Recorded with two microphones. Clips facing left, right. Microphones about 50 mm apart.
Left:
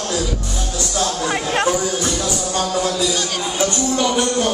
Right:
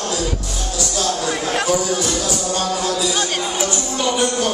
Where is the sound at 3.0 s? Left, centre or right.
Right.